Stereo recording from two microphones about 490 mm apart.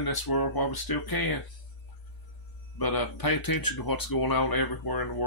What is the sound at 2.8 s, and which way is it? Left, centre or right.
Speech, left.